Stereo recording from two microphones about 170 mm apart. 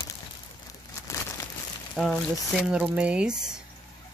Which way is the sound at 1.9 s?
Centre (ahead or behind).